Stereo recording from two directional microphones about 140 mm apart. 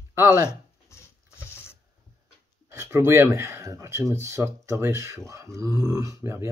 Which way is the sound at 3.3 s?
20° right (ahead or behind).